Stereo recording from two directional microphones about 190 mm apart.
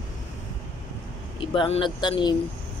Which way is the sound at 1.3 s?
25° left (ahead or behind).